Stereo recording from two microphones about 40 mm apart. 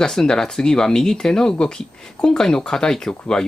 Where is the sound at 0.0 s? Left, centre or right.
Centre.